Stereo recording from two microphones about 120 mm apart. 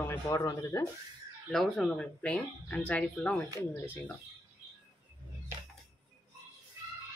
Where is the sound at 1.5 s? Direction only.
5° left (ahead or behind).